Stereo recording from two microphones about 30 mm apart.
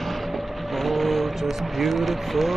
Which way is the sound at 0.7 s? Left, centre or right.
Centre.